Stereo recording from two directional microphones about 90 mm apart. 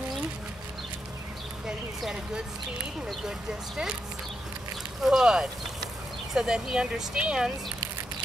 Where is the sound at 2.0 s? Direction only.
5° right (ahead or behind).